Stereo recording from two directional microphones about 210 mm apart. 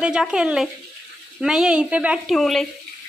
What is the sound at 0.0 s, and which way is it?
A woman's voice, 5° right (ahead or behind).